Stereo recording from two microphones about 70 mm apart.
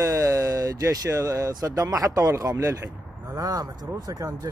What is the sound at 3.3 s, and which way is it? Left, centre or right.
Speech, right.